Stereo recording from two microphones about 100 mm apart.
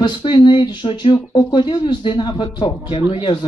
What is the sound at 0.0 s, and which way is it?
A man's voice, 55° left (ahead or behind).